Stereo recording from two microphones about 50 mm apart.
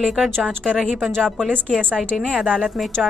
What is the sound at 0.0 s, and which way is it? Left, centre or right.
Speech, centre.